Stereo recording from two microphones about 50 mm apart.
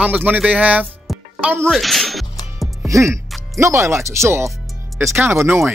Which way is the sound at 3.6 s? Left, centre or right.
Right.